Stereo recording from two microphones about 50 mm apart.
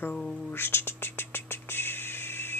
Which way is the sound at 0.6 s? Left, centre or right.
Left.